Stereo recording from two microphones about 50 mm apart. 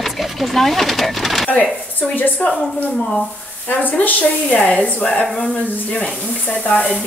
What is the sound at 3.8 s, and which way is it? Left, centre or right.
Speech, left.